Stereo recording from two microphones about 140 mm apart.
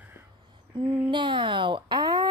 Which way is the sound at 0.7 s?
40° right (ahead or behind).